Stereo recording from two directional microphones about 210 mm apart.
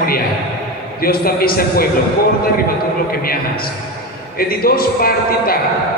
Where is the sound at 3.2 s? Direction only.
45° left (ahead or behind).